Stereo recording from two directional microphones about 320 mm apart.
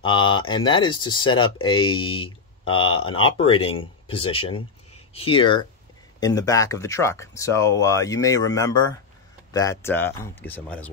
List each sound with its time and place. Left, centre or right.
0.0 s speech: centre